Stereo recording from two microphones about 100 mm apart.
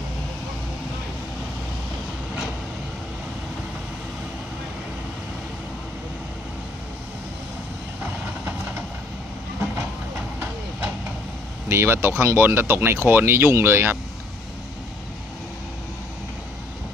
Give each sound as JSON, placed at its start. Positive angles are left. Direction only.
{"t": 8.0, "sound": "vehicle", "side_deg": -20}
{"t": 9.6, "sound": "train", "side_deg": -30}
{"t": 11.7, "sound": "speech", "side_deg": -25}